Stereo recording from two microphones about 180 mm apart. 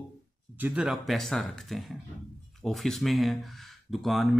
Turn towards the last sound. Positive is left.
turn(degrees=0)  # may be behind; listen again after turning